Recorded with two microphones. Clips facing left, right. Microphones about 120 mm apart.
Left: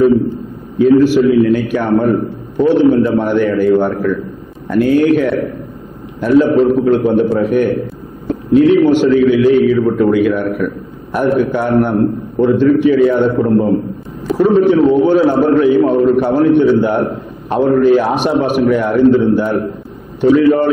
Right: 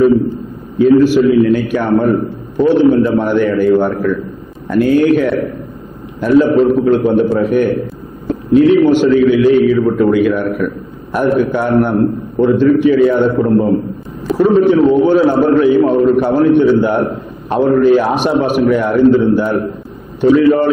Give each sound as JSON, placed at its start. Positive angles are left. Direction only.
{"t": 1.1, "sound": "a man's voice", "side_deg": -15}